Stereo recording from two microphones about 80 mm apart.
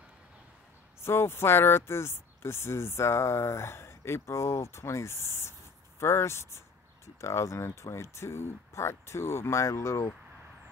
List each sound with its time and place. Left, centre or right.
1.0 s speech: left